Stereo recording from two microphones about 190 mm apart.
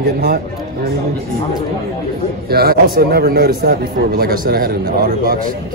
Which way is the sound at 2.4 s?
55° right (ahead or behind).